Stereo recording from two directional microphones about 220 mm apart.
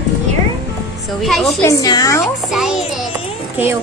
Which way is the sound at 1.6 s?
15° left (ahead or behind).